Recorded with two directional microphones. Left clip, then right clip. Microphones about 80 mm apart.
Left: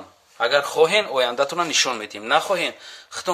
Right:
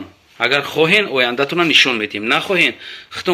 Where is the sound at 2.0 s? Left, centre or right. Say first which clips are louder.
Right 3 dB; left.